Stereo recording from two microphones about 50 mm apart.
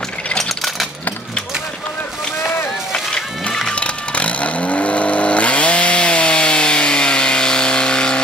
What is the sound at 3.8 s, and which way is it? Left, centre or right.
Vehicle, left.